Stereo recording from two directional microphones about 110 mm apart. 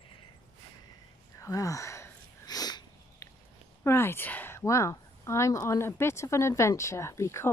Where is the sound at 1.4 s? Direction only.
30° left (ahead or behind).